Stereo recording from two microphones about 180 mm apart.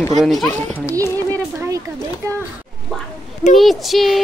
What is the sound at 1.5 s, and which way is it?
Speech, 15° right (ahead or behind).